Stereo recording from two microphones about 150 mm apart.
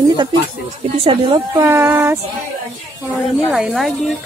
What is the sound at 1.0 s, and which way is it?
Speech, 35° right (ahead or behind).